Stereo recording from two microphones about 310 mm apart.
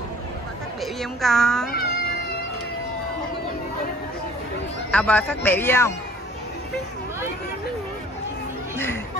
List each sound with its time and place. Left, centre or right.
1.2 s a child's voice: centre
1.7 s cat: left
4.9 s a man's voice: centre
8.7 s chatter: centre